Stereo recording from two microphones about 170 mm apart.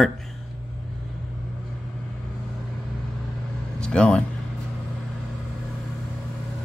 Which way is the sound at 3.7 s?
5° left (ahead or behind).